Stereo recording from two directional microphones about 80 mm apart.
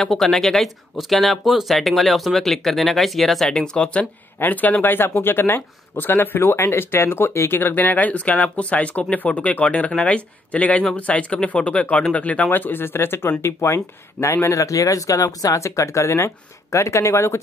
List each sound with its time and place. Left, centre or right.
0.0 s speech: centre; by 17.4 s left